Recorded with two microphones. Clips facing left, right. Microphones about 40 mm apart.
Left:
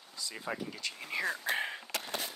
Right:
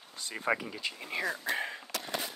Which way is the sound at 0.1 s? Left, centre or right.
Right.